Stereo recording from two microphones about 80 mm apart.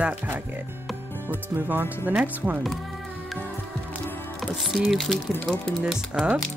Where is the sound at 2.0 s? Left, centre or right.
Right.